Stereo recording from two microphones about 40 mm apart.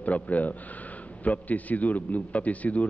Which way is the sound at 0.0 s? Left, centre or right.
Left.